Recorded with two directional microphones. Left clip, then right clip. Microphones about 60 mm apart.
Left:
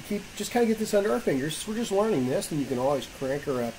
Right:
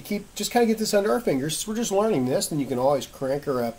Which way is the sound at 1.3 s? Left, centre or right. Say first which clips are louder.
Right 3 dB; right.